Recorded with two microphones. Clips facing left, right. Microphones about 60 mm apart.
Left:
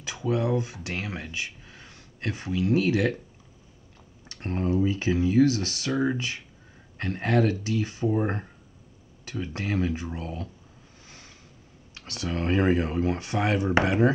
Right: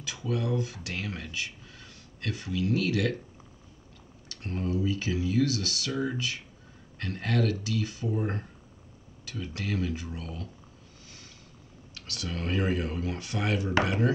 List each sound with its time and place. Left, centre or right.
0.0 s speech: left
4.3 s speech: left
11.9 s speech: left